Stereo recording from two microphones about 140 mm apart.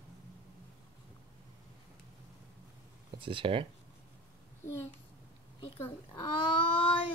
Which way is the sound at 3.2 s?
40° right (ahead or behind).